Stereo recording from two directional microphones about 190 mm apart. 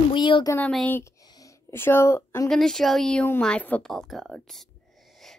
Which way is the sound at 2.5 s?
Centre (ahead or behind).